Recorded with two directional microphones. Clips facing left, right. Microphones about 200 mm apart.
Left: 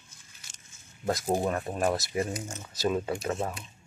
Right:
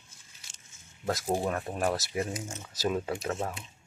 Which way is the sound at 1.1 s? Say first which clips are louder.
Left 2 dB; 15° left (ahead or behind).